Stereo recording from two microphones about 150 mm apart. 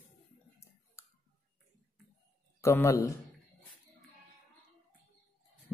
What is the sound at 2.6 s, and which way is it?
Speech, 20° left (ahead or behind).